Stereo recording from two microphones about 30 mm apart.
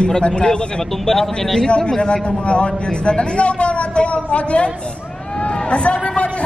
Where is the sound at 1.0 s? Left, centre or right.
Centre.